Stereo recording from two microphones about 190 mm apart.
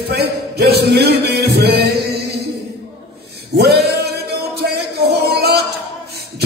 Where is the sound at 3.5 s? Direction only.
60° right (ahead or behind).